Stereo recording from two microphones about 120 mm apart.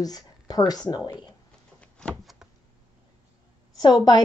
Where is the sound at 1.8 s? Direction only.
10° left (ahead or behind).